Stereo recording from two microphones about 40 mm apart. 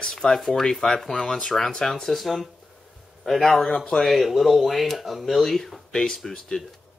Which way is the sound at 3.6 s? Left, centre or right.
Centre.